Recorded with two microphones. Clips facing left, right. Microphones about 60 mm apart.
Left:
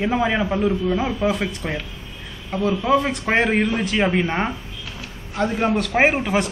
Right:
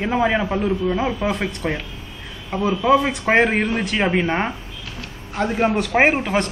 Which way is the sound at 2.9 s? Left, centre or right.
Centre.